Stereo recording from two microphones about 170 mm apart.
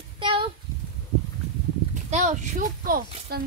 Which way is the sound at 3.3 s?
65° right (ahead or behind).